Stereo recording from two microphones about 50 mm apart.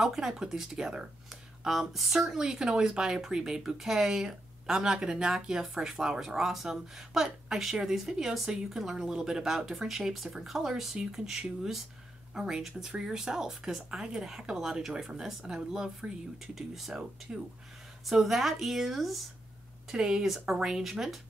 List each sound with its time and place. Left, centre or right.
0.0 s speech: centre
17.3 s speech: right
18.0 s speech: centre
19.9 s speech: centre